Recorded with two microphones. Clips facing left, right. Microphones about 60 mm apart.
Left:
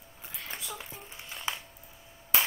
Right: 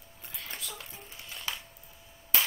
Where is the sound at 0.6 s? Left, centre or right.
Centre.